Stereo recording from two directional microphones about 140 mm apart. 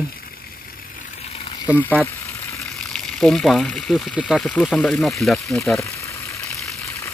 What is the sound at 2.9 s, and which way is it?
Speech, 5° left (ahead or behind).